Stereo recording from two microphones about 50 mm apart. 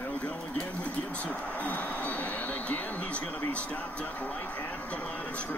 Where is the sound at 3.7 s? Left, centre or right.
Left.